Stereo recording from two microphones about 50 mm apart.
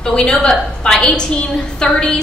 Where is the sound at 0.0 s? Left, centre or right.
Centre.